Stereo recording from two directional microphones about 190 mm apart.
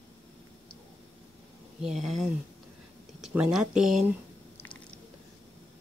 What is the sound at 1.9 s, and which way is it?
Speech, 35° right (ahead or behind).